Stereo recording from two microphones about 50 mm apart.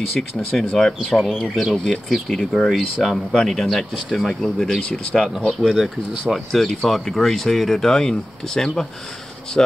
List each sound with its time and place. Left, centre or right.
0.2 s speech: centre
1.1 s speech: centre
4.8 s speech: centre
5.5 s speech: centre